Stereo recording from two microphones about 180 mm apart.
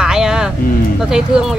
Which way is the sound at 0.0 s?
5° right (ahead or behind).